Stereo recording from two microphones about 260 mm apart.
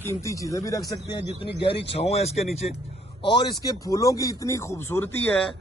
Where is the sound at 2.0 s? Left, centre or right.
Left.